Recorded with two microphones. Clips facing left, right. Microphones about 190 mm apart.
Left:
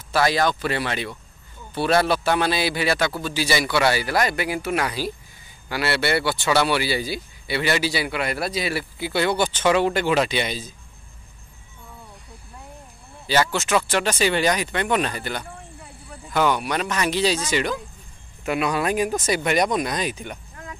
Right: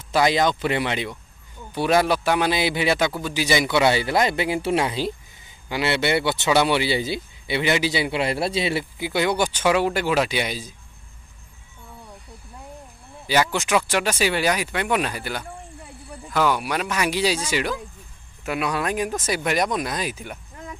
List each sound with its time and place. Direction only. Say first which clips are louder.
0.1 s speech: right 1 dB; 20° right (ahead or behind)
13.3 s speech: even; 15° right (ahead or behind)